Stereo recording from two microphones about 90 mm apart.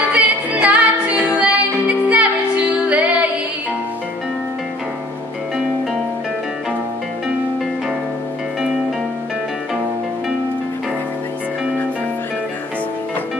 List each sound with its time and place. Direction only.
0.1 s music: 15° right (ahead or behind)